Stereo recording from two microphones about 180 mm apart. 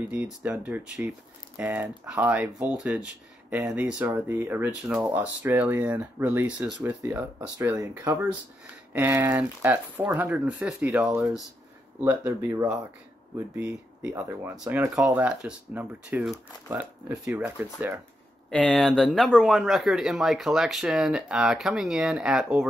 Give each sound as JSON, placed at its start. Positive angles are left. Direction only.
{"t": 0.1, "sound": "speech", "side_deg": -5}
{"t": 12.0, "sound": "speech", "side_deg": -15}
{"t": 15.0, "sound": "speech", "side_deg": -5}
{"t": 18.5, "sound": "speech", "side_deg": 5}